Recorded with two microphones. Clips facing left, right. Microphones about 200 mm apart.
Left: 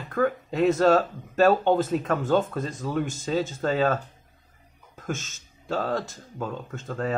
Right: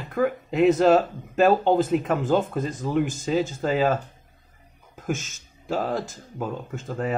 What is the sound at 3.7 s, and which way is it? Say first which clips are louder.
Speech: right 2 dB; 15° right (ahead or behind).